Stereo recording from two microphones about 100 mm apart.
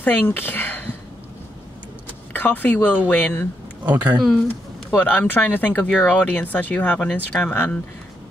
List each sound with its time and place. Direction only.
0.0 s speech: 20° left (ahead or behind)
2.3 s speech: 20° left (ahead or behind)
3.8 s speech: 15° right (ahead or behind)
5.0 s speech: 15° left (ahead or behind)